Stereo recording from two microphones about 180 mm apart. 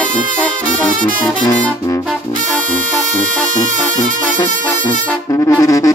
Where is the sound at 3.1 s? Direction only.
45° right (ahead or behind).